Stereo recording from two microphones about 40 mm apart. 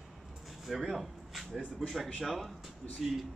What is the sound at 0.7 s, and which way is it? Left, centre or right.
Speech, centre.